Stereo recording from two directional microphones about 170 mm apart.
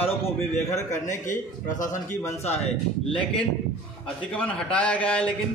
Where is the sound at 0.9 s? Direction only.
50° left (ahead or behind).